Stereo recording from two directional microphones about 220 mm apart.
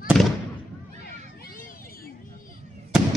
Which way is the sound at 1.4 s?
40° left (ahead or behind).